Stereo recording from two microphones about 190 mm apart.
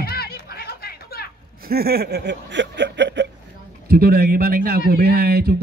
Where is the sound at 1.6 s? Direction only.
55° right (ahead or behind).